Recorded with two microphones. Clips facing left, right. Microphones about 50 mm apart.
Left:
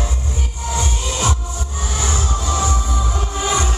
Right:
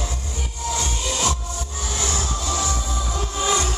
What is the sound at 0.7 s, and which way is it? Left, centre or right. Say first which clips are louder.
Music: left 3 dB; centre.